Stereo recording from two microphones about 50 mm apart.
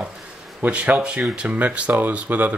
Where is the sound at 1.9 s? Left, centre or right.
Right.